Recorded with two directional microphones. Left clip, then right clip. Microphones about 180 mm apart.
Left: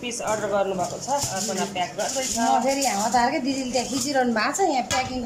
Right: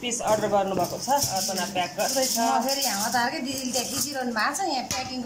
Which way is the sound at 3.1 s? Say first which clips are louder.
Left 4 dB; 30° left (ahead or behind).